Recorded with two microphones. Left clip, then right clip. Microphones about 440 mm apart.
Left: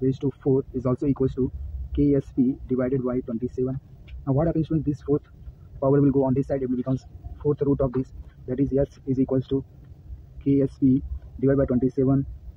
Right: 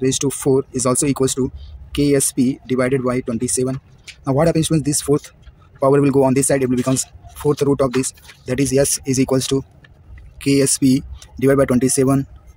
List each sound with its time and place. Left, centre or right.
0.1 s speech: left